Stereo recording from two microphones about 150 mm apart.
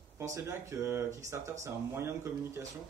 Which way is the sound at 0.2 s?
20° right (ahead or behind).